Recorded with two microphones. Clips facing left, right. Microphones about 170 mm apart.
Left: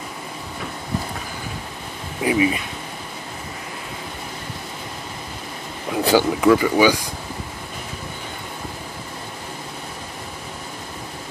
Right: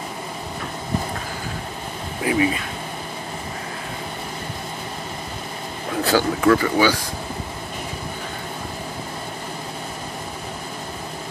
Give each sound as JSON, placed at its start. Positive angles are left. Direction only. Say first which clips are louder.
{"t": 2.2, "sound": "speech", "louder": "left 1 dB", "side_deg": 20}
{"t": 6.0, "sound": "speech", "louder": "left 2 dB", "side_deg": 15}